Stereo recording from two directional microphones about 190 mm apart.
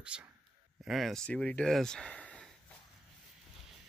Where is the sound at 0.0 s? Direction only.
5° right (ahead or behind).